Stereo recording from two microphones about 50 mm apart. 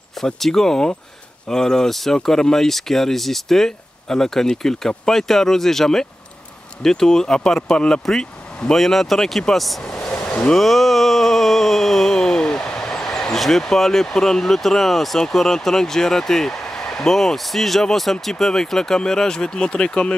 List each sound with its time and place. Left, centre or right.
0.2 s speech: centre
10.2 s vehicle: left
10.5 s a sound: centre
18.4 s speech: centre